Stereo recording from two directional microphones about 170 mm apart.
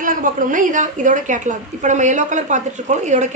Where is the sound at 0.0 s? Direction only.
50° right (ahead or behind).